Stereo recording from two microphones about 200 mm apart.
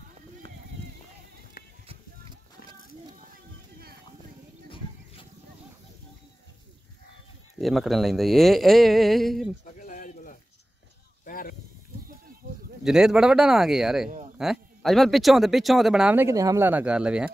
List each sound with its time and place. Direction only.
7.5 s speech: centre (ahead or behind)
9.8 s a sound: 40° left (ahead or behind)
12.8 s speech: 5° right (ahead or behind)